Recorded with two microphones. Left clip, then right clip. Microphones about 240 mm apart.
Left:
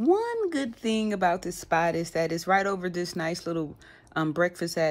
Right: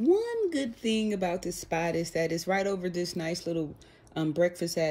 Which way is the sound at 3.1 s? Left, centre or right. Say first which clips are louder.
Left 2 dB; centre.